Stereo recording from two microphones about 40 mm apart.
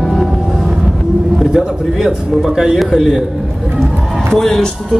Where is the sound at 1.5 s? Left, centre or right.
Centre.